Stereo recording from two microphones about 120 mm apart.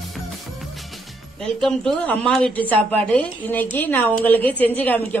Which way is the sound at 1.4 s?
5° left (ahead or behind).